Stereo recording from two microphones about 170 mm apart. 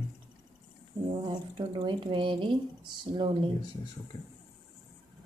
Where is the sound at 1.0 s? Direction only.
30° right (ahead or behind).